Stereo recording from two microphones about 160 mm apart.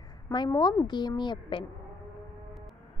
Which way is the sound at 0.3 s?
25° left (ahead or behind).